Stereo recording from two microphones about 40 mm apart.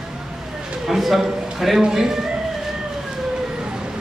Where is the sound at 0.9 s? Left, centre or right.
Centre.